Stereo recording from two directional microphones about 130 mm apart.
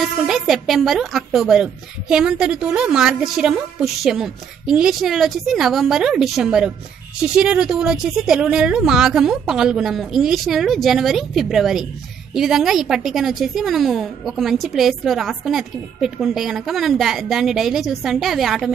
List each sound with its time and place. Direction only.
0.0 s a woman's voice: centre (ahead or behind)